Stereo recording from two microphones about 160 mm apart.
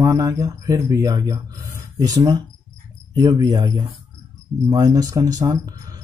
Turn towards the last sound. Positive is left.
turn(degrees=-25)  # may be behind; listen again after turning